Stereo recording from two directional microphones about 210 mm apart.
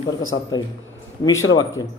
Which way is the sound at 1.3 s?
70° left (ahead or behind).